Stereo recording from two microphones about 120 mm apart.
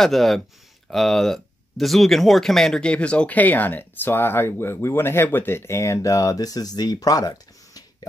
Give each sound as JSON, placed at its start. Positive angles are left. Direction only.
{"t": 0.0, "sound": "speech", "side_deg": 0}